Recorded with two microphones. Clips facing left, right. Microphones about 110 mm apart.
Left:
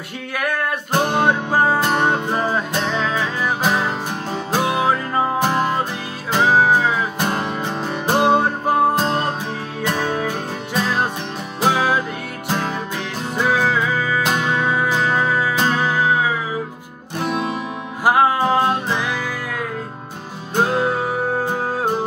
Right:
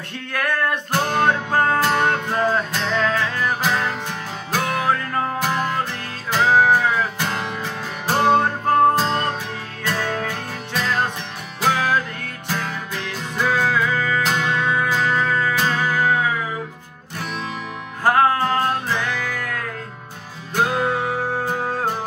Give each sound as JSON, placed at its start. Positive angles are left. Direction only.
{"t": 0.3, "sound": "a sound", "side_deg": 10}
{"t": 1.1, "sound": "music", "side_deg": 10}
{"t": 15.5, "sound": "music", "side_deg": 25}
{"t": 18.0, "sound": "music", "side_deg": 10}
{"t": 20.5, "sound": "music", "side_deg": 25}